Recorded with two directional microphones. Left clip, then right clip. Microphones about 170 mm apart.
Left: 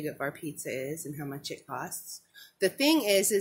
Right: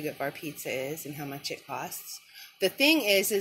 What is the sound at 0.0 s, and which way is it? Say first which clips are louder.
Speech: right 1 dB; 5° left (ahead or behind).